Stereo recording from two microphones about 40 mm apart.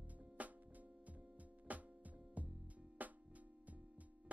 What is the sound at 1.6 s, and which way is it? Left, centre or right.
Music, right.